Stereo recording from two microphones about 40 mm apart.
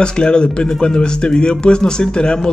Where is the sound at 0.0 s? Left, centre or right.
Left.